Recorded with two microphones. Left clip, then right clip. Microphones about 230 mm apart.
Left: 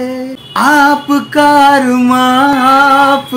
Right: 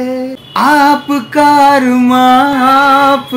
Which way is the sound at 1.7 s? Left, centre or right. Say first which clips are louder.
Even; centre.